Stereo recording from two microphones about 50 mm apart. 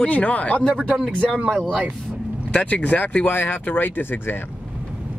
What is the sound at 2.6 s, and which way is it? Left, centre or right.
Speech, left.